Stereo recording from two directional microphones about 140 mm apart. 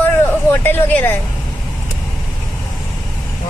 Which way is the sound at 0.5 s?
15° left (ahead or behind).